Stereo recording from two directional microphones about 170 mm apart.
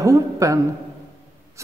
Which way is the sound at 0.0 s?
20° right (ahead or behind).